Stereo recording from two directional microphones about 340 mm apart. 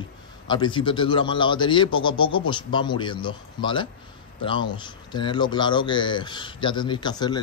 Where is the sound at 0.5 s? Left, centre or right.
Centre.